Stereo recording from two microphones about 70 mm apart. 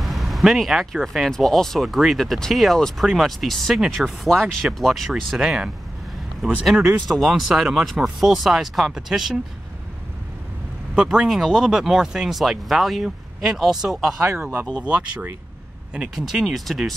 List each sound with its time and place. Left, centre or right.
0.0 s a sound: centre
1.0 s speech: centre
11.0 s speech: centre
14.2 s speech: right
15.9 s speech: centre